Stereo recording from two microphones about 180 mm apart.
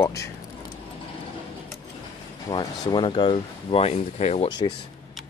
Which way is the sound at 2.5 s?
20° left (ahead or behind).